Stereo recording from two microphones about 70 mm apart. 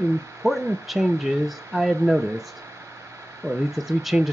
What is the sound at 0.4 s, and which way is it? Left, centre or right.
Speech, right.